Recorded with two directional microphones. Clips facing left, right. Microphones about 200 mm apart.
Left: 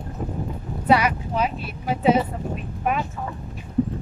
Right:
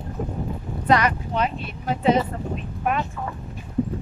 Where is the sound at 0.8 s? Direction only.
5° left (ahead or behind).